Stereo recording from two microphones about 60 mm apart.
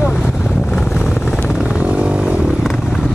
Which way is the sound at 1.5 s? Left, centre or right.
Centre.